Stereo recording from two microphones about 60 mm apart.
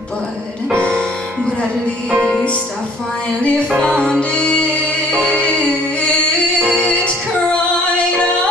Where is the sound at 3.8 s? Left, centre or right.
Centre.